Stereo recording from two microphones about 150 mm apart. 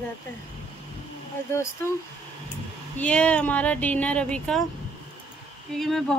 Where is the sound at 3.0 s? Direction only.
10° left (ahead or behind).